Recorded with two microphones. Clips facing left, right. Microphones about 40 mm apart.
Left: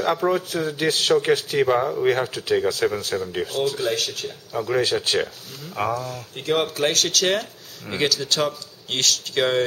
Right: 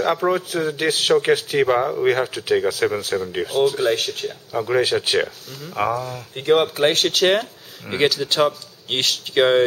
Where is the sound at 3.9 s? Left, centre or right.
Right.